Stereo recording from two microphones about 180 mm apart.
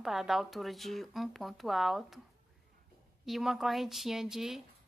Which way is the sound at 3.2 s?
Centre (ahead or behind).